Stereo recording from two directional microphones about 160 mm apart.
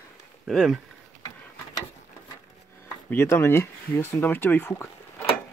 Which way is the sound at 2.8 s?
15° left (ahead or behind).